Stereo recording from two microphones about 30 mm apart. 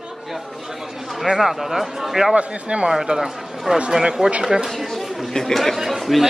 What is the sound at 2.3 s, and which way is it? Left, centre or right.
Speech, right.